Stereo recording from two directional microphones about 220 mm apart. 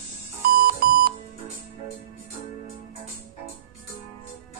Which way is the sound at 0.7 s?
45° right (ahead or behind).